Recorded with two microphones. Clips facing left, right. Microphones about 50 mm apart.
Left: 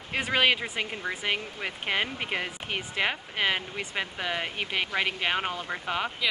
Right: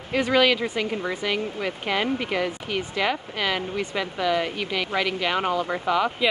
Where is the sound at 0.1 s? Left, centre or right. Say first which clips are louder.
Right 5 dB; left.